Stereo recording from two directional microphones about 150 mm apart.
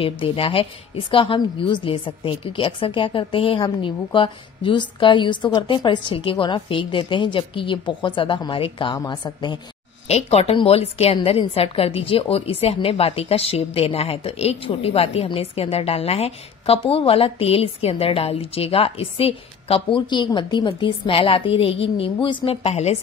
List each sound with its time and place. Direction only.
0.0 s a woman's voice: 35° left (ahead or behind)
10.0 s a woman's voice: 45° left (ahead or behind)